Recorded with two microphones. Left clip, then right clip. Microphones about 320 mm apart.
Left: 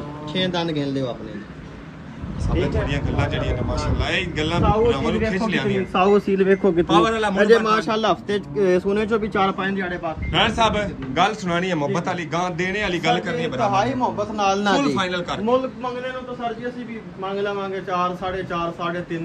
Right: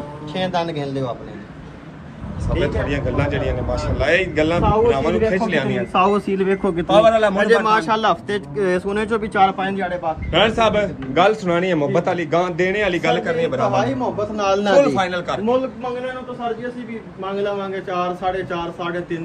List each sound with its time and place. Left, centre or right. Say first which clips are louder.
0.3 s speech: right 2 dB; centre
2.6 s a man's voice: right 4 dB; centre
5.9 s speech: even; centre
7.1 s a man's voice: right 7 dB; centre
7.3 s a man's voice: right 1 dB; right
10.3 s a man's voice: right 3 dB; centre
13.6 s a man's voice: right 1 dB; left
14.9 s a man's voice: right 3 dB; centre
17.3 s a man's voice: right 2 dB; centre